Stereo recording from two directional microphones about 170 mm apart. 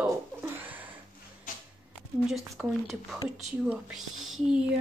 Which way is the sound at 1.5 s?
50° left (ahead or behind).